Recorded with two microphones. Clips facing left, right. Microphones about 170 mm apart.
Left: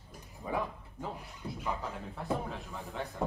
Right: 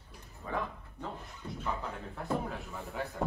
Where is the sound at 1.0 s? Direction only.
10° left (ahead or behind).